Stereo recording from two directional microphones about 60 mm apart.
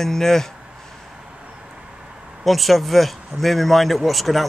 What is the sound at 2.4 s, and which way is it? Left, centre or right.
Speech, centre.